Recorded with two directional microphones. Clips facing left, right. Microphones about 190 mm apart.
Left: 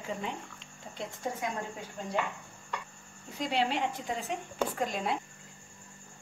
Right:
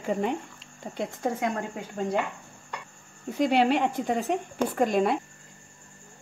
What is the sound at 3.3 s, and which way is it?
A woman's voice, 60° right (ahead or behind).